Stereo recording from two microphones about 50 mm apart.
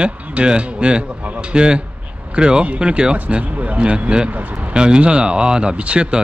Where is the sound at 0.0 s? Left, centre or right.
Right.